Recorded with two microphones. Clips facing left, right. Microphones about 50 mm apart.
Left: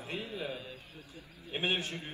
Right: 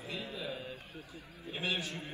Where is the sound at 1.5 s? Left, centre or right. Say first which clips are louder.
Left 3 dB; left.